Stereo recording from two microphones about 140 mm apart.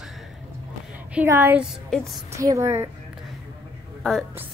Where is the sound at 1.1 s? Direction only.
15° right (ahead or behind).